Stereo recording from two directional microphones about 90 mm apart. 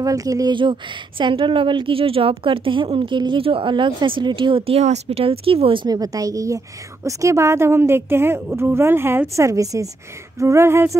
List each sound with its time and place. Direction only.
0.0 s a woman's voice: 40° right (ahead or behind)
0.5 s speech: 65° right (ahead or behind); by 5.9 s 80° right
5.9 s a woman's voice: 45° right (ahead or behind)